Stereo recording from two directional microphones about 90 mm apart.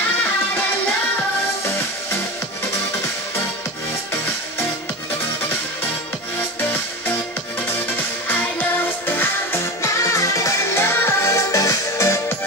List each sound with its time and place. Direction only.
8.3 s music: 20° left (ahead or behind)